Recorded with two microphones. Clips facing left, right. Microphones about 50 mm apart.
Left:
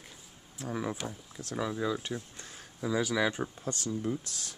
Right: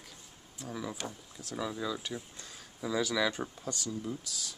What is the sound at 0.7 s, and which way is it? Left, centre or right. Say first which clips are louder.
Speech: left 5 dB; left.